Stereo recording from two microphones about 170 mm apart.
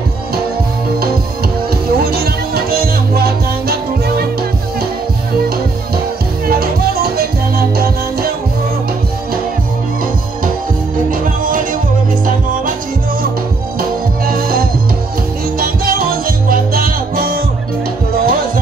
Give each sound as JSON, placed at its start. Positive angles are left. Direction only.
{"t": 2.0, "sound": "music", "side_deg": -65}
{"t": 6.4, "sound": "music", "side_deg": -60}
{"t": 11.1, "sound": "music", "side_deg": -55}
{"t": 13.7, "sound": "music", "side_deg": -60}